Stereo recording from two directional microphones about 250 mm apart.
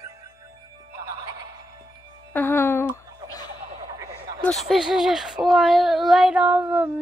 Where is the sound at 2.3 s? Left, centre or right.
Centre.